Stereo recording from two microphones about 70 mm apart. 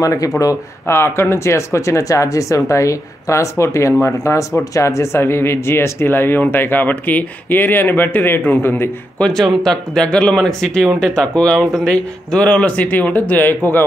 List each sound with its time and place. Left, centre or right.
0.0 s speech: left
0.8 s speech: left
9.3 s speech: centre; by 13.8 s left